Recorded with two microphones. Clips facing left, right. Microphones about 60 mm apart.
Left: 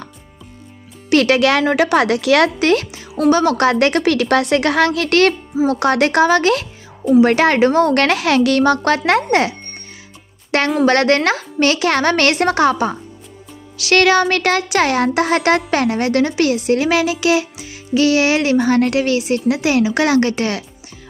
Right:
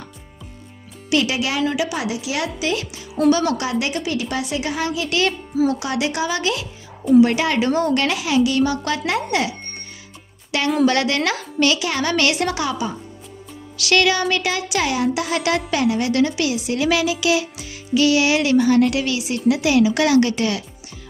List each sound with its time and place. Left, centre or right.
1.1 s a woman's voice: left
2.9 s speech: left
3.6 s a woman's voice: left